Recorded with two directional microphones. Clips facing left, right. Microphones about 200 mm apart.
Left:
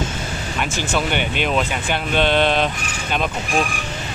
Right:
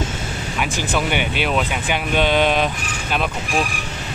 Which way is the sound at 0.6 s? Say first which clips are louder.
Even; 10° right (ahead or behind).